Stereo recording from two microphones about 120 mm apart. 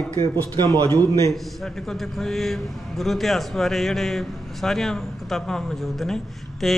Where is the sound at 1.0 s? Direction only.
25° left (ahead or behind).